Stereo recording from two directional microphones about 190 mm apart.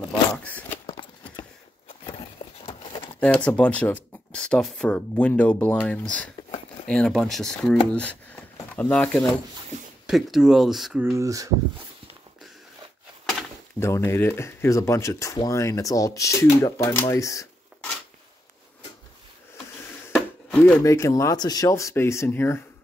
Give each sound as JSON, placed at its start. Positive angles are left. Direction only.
{"t": 0.4, "sound": "biting", "side_deg": 10}
{"t": 0.8, "sound": "a sound", "side_deg": 25}
{"t": 3.2, "sound": "speech", "side_deg": 5}
{"t": 11.1, "sound": "speech", "side_deg": -15}
{"t": 13.7, "sound": "speech", "side_deg": 15}
{"t": 20.2, "sound": "speech", "side_deg": 5}